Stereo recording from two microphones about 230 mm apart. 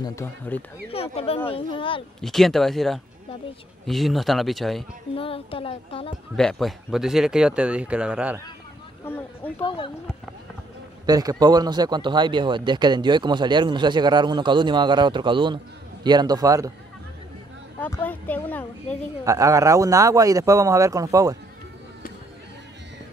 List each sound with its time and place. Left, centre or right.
0.0 s speech: centre
0.9 s speech: left
2.2 s speech: centre
5.1 s speech: left
6.3 s speech: centre
9.0 s a sound: centre
9.6 s speech: left
11.1 s speech: centre
17.7 s speech: centre
19.2 s speech: centre